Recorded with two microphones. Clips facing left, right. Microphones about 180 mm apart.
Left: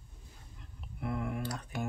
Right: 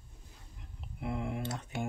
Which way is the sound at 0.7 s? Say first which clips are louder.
Even; 20° right (ahead or behind).